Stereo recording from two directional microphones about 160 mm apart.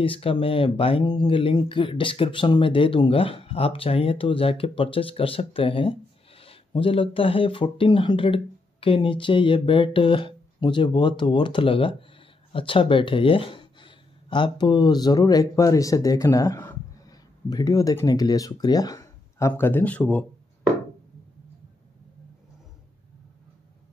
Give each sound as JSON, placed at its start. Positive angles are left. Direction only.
{"t": 0.0, "sound": "speech", "side_deg": 35}